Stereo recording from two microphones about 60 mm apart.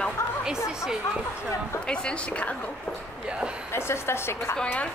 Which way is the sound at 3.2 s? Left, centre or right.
Centre.